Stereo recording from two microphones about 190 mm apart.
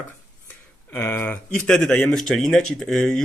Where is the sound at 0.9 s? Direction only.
10° left (ahead or behind).